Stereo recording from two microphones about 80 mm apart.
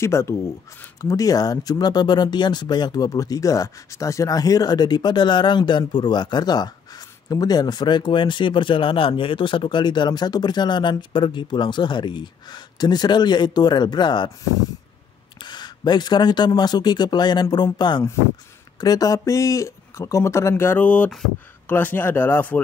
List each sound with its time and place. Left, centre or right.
0.0 s speech: left
1.0 s speech: left
15.3 s speech: left
18.8 s speech: left